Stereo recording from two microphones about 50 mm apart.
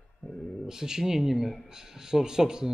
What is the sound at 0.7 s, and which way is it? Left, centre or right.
Speech, centre.